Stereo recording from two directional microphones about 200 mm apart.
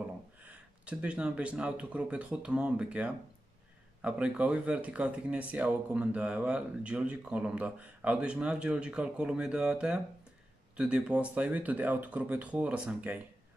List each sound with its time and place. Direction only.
0.4 s speech: 5° right (ahead or behind)